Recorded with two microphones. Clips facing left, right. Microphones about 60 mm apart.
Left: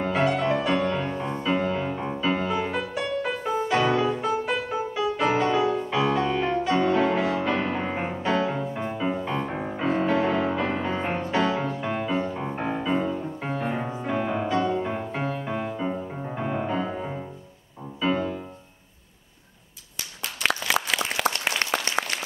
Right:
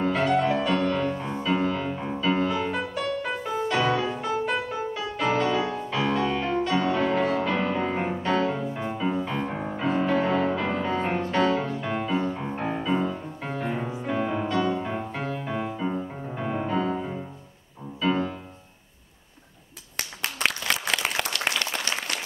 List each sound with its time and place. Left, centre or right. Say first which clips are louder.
0.0 s music: right 1 dB; centre
0.7 s music: even; centre
20.4 s a sound: left 1 dB; right
21.3 s applause: left 1 dB; left